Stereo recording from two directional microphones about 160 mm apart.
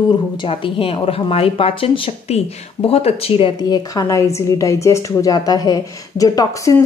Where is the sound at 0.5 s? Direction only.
35° left (ahead or behind).